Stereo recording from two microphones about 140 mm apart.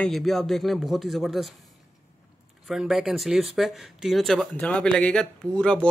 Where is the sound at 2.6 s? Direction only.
5° right (ahead or behind).